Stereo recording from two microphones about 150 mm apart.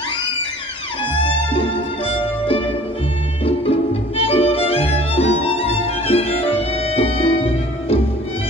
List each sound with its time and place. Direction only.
1.2 s music: 40° left (ahead or behind)
4.2 s music: 40° left (ahead or behind)